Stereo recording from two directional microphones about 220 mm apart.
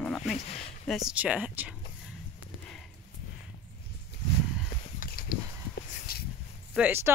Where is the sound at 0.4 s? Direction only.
25° left (ahead or behind).